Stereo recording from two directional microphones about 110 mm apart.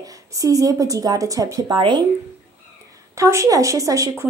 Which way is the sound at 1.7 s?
45° right (ahead or behind).